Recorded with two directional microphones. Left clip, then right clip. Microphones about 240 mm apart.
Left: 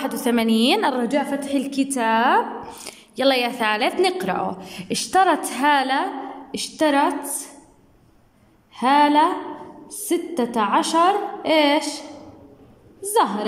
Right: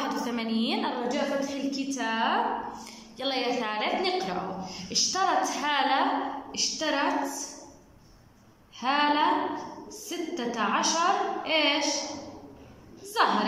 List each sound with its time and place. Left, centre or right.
0.0 s a woman's voice: left
8.7 s a woman's voice: left